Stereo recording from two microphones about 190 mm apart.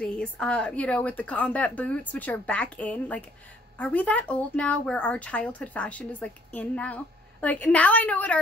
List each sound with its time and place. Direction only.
0.0 s a woman's voice: 5° left (ahead or behind)